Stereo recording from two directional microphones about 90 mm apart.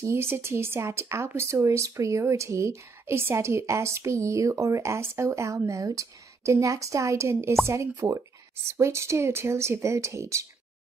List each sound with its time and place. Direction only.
0.0 s speech: 30° right (ahead or behind)